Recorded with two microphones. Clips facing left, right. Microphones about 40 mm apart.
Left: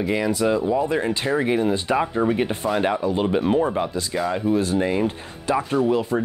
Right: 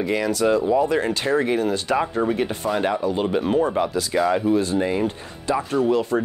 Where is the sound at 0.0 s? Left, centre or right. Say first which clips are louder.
Even; centre.